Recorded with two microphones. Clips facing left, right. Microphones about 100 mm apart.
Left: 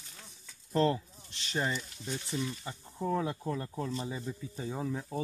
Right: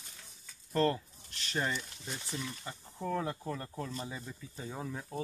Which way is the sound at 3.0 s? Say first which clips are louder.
Left 3 dB; 20° left (ahead or behind).